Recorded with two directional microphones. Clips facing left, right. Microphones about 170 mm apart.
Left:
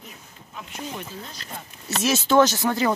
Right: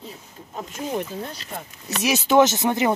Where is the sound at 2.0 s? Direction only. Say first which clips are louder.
Right 1 dB; 15° right (ahead or behind).